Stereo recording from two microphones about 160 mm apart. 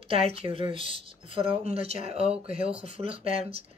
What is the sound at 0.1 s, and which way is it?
Speech, 35° right (ahead or behind).